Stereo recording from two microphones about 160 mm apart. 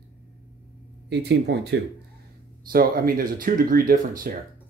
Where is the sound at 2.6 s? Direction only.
65° right (ahead or behind).